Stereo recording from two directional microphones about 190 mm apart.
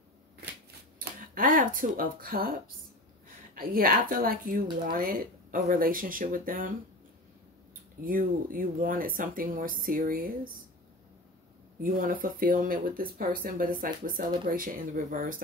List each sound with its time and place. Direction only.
0.9 s speech: 45° right (ahead or behind)
3.5 s speech: 50° right (ahead or behind)
8.0 s speech: 50° right (ahead or behind)
11.8 s speech: 45° right (ahead or behind)